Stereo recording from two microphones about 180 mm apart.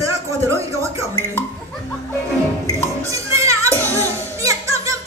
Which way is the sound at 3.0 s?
15° right (ahead or behind).